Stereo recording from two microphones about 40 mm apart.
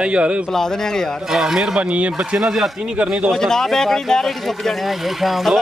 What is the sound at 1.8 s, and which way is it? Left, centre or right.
Speech, right.